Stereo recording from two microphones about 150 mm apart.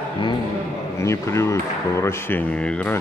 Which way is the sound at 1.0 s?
20° left (ahead or behind).